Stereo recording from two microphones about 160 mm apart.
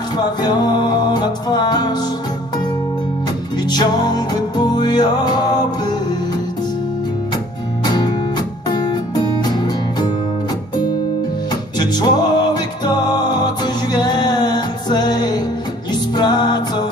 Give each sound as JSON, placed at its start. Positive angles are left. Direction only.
{"t": 0.2, "sound": "music", "side_deg": 25}
{"t": 3.6, "sound": "music", "side_deg": 25}
{"t": 7.8, "sound": "music", "side_deg": 25}
{"t": 11.8, "sound": "music", "side_deg": 25}